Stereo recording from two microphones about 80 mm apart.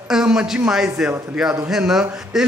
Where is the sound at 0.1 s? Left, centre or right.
Centre.